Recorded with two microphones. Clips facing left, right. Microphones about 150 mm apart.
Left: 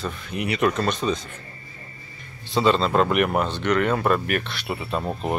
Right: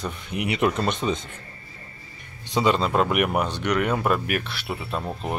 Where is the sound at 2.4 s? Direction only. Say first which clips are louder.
Left 2 dB; 15° right (ahead or behind); by 5.0 s centre (ahead or behind).